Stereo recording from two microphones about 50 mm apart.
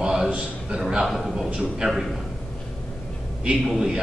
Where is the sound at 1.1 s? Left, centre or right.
Centre.